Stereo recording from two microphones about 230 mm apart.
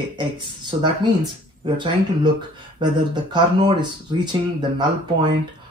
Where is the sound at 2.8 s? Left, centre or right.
Centre.